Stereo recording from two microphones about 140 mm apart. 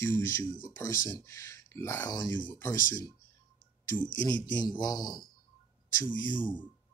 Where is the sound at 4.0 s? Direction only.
30° left (ahead or behind).